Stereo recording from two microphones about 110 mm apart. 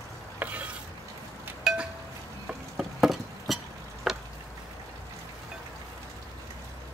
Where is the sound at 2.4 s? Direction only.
5° right (ahead or behind).